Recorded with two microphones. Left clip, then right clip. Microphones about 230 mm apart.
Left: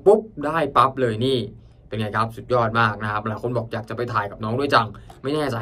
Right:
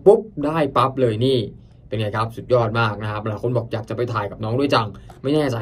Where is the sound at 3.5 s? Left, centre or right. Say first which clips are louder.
Right 2 dB; centre.